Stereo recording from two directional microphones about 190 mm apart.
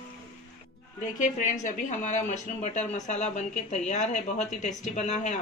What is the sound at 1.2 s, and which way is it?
Speech, 40° left (ahead or behind).